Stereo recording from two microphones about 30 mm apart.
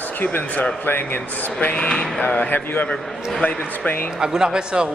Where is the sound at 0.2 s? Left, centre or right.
Left.